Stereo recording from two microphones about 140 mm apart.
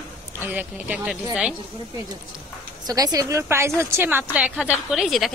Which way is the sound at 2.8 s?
25° right (ahead or behind).